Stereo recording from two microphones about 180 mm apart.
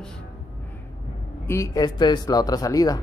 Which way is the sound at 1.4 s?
15° left (ahead or behind).